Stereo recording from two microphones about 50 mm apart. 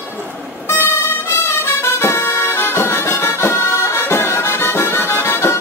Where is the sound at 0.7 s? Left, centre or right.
Left.